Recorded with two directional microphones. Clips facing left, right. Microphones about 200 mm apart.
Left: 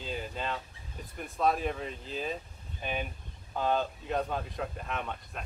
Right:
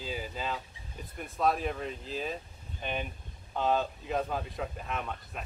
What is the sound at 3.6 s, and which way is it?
Speech, centre (ahead or behind).